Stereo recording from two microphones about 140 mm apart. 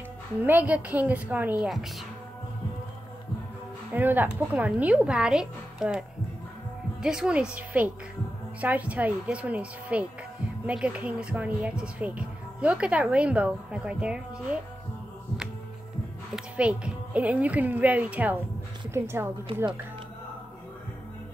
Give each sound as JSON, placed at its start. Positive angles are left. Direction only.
{"t": 0.4, "sound": "speech", "side_deg": -10}
{"t": 3.9, "sound": "speech", "side_deg": -15}
{"t": 16.3, "sound": "a woman's voice", "side_deg": -10}